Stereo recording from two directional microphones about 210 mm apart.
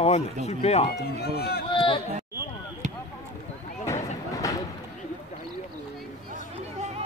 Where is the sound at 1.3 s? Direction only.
50° left (ahead or behind).